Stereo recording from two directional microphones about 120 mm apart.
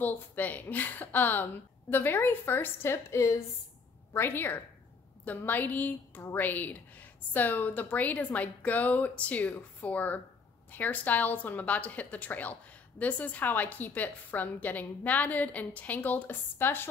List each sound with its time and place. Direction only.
0.0 s a woman's voice: 15° left (ahead or behind)